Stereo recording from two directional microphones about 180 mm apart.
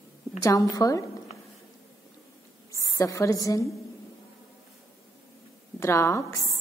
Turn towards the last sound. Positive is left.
turn(degrees=15)  # may be behind; listen again after turning